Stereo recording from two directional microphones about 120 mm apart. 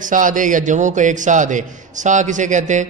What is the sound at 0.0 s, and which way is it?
A man's voice, 90° right.